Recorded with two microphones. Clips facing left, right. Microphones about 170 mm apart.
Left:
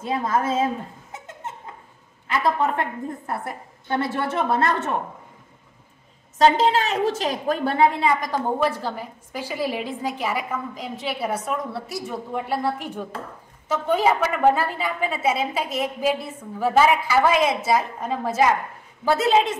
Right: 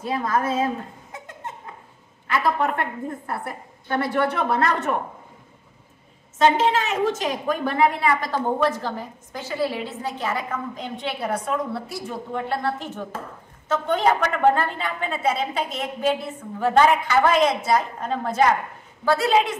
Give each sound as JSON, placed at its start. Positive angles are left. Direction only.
{"t": 0.0, "sound": "speech", "side_deg": 25}
{"t": 1.1, "sound": "a sound", "side_deg": 25}
{"t": 3.9, "sound": "speech", "side_deg": 25}
{"t": 6.3, "sound": "a woman's voice", "side_deg": 35}
{"t": 8.2, "sound": "a woman's voice", "side_deg": 10}
{"t": 19.0, "sound": "speech", "side_deg": 20}